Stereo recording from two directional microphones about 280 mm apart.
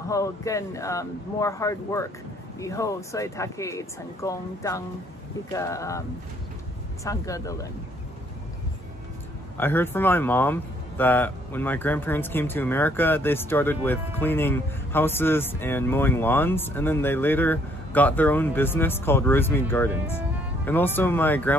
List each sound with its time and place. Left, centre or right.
0.1 s speech: centre
7.1 s speech: centre
9.6 s speech: centre